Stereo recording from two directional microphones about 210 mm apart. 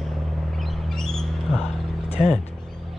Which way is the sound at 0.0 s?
Centre (ahead or behind).